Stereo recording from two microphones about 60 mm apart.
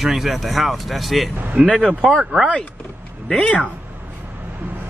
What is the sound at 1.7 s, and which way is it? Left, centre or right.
Speech, centre.